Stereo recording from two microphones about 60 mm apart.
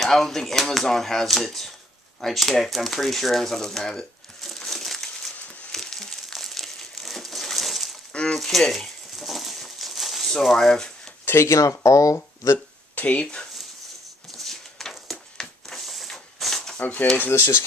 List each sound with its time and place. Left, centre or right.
0.0 s speech: centre
2.2 s a sound: centre
8.1 s a sound: centre
8.4 s bird: centre
11.2 s speech: left
11.6 s speech: left
12.9 s speech: left
14.3 s a sound: centre
16.8 s speech: left
17.2 s speech: left